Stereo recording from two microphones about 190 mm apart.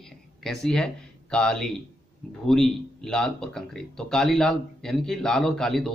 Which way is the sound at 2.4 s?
Centre (ahead or behind).